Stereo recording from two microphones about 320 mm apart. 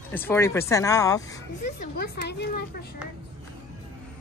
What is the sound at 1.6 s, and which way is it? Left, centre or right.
A woman's voice, left.